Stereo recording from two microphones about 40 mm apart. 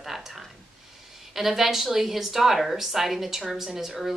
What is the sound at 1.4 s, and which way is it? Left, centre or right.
A woman's voice, centre.